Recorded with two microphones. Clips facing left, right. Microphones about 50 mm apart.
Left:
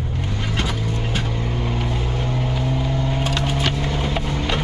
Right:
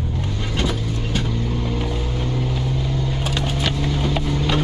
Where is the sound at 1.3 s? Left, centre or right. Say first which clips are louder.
Right 1 dB; left.